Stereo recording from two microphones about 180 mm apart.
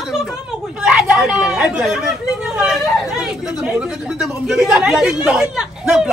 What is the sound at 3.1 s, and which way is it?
Speech, 5° right (ahead or behind).